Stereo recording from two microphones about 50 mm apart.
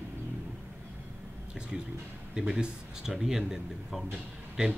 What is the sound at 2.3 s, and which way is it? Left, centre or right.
Speech, centre.